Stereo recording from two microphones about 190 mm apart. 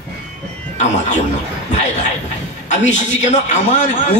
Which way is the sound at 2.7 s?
35° left (ahead or behind).